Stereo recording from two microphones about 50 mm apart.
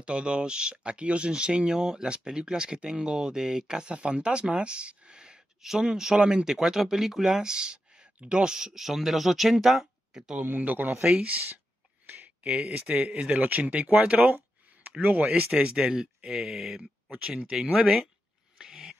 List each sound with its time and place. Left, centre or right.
0.0 s speech: centre
10.4 s a man's voice: right
11.0 s speech: centre
12.4 s speech: right
15.5 s speech: centre
18.6 s dog: centre